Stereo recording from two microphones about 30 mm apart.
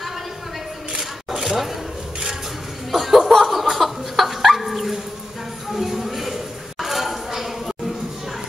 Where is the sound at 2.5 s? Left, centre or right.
Centre.